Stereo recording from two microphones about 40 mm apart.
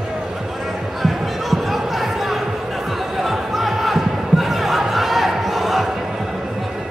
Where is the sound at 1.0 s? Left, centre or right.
Centre.